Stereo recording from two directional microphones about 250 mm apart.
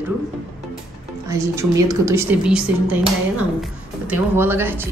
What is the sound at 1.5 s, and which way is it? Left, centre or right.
A woman's voice, centre.